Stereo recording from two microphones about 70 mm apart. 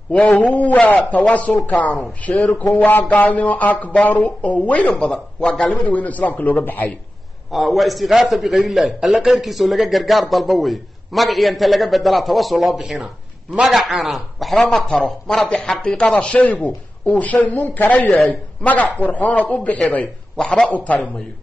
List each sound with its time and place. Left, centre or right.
0.4 s speech: centre
4.9 s speech: centre; by 6.9 s left
7.5 s a man's voice: centre
20.3 s a man's voice: centre
20.7 s speech: left